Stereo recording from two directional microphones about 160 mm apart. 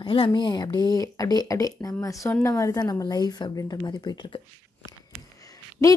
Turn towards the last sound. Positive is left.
turn(degrees=20)  # may be behind; listen again after turning